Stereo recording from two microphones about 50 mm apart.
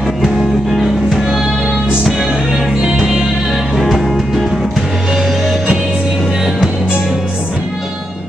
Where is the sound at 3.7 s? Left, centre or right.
Centre.